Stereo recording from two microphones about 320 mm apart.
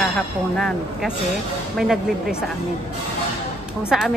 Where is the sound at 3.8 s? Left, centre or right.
Centre.